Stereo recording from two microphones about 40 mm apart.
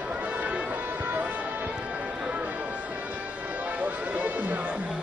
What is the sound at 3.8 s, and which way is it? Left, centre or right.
Music, right.